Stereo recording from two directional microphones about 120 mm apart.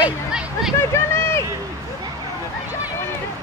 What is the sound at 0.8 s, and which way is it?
Speech, 20° left (ahead or behind).